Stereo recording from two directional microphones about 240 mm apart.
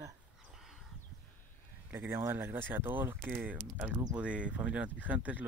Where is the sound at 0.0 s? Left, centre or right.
Centre.